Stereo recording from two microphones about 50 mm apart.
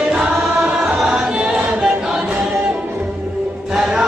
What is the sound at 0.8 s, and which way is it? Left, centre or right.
A capella, centre.